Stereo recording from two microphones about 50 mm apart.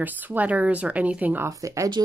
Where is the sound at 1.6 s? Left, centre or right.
Right.